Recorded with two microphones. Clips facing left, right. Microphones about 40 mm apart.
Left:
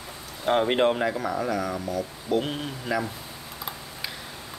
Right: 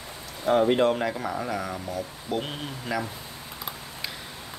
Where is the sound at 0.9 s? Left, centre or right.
Centre.